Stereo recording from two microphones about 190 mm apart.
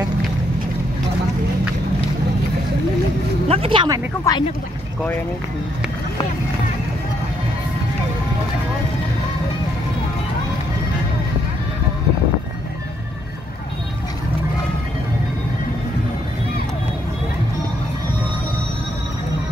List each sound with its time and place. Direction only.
3.4 s speech: 30° right (ahead or behind)
4.2 s speech: 20° left (ahead or behind)